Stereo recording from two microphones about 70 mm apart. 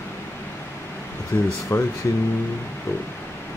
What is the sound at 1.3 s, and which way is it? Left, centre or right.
Speech, left.